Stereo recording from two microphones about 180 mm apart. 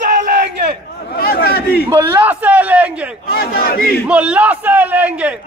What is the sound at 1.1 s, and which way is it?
Speech, 55° left (ahead or behind).